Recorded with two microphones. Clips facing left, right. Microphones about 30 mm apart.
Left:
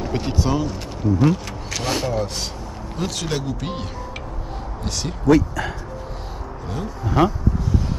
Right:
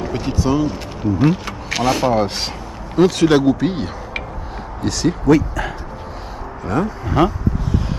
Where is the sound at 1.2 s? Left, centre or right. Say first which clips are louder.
Right 4 dB; right.